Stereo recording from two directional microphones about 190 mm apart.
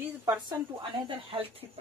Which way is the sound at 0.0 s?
20° right (ahead or behind).